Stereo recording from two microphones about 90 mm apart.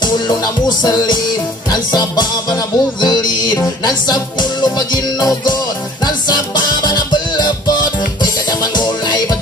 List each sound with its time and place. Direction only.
0.0 s music: 55° left (ahead or behind)